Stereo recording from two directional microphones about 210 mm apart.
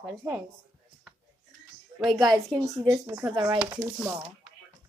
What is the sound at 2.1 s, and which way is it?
A woman's voice, 20° right (ahead or behind).